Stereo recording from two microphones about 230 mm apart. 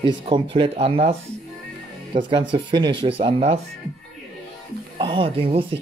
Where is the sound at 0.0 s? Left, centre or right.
Right.